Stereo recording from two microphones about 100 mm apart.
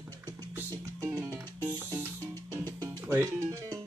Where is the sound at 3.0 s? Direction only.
20° right (ahead or behind).